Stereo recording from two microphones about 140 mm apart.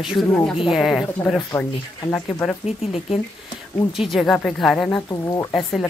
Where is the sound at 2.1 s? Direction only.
10° left (ahead or behind).